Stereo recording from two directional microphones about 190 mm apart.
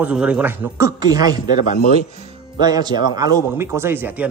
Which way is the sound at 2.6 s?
20° right (ahead or behind).